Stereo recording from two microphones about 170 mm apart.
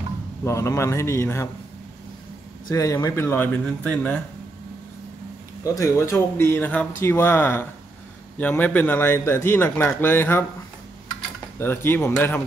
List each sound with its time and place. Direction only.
0.5 s a man's voice: 15° left (ahead or behind)
2.7 s a man's voice: 20° left (ahead or behind)
5.6 s a man's voice: 15° left (ahead or behind)
11.6 s a man's voice: 10° left (ahead or behind)